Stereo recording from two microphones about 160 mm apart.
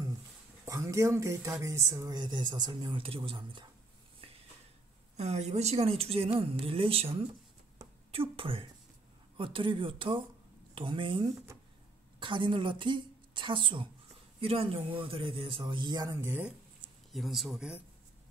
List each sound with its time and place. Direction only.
0.7 s speech: 20° right (ahead or behind)
5.1 s a woman's voice: 45° right (ahead or behind); by 16.5 s 10° right (ahead or behind)
17.1 s speech: centre (ahead or behind)